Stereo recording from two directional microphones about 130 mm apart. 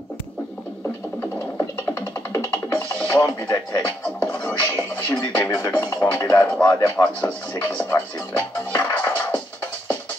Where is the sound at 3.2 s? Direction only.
20° left (ahead or behind).